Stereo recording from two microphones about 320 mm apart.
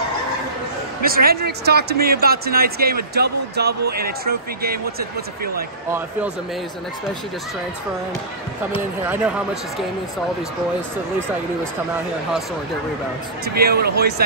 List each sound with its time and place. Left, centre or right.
1.0 s speech: right
5.9 s speech: centre
8.7 s speech: centre
13.6 s speech: right